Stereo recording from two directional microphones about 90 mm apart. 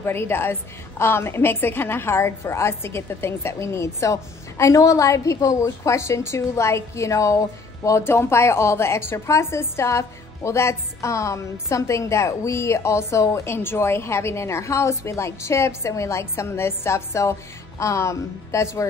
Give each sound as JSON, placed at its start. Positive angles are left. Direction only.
{"t": 0.0, "sound": "a woman's voice", "side_deg": 25}